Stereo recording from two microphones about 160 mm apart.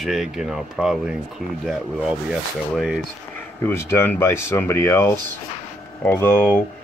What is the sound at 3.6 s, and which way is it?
Speech, 15° left (ahead or behind).